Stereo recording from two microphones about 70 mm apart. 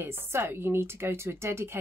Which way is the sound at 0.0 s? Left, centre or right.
Right.